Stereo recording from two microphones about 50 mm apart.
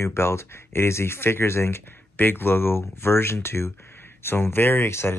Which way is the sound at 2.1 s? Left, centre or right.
Left.